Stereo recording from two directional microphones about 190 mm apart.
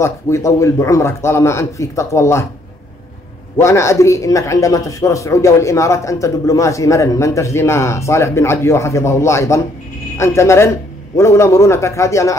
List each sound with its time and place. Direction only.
0.0 s a man's voice: 15° left (ahead or behind)
3.5 s a man's voice: 15° left (ahead or behind)